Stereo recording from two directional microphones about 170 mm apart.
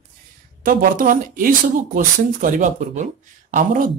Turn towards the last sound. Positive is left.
turn(degrees=-55)  # may be behind; listen again after turning